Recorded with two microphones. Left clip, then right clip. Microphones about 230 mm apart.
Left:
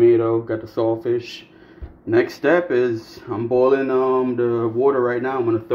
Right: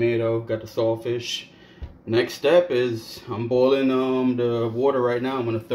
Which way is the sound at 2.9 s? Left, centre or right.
Centre.